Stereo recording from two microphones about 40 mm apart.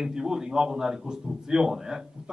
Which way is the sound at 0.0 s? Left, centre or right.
Centre.